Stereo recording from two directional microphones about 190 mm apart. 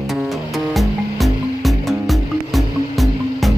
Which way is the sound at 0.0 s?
Centre (ahead or behind).